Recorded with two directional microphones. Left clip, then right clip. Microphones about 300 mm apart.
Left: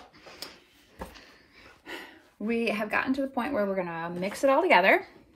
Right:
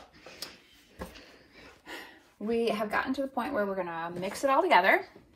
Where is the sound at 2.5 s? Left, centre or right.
Left.